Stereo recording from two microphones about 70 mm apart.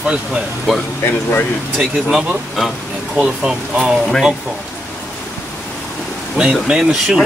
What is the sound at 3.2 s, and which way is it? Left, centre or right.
Speech, centre.